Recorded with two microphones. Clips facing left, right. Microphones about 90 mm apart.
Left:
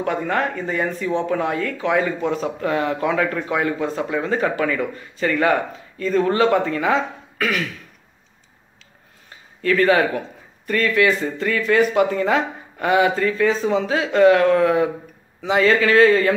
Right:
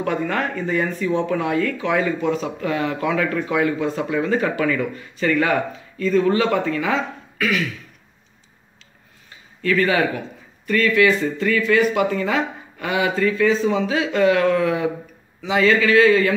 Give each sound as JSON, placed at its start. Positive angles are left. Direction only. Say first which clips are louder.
{"t": 0.0, "sound": "speech", "louder": "left 1 dB", "side_deg": 25}
{"t": 5.9, "sound": "speech", "louder": "even", "side_deg": 40}
{"t": 9.7, "sound": "speech", "louder": "left 2 dB", "side_deg": 40}